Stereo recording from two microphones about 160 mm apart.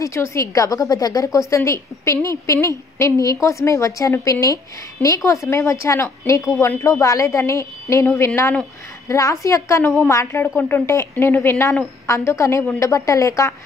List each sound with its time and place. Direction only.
0.0 s a woman's voice: 20° left (ahead or behind)